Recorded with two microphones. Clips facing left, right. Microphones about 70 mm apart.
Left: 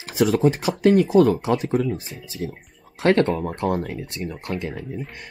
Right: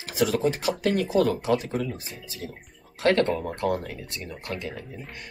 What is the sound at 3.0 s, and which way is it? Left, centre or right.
Speech, left.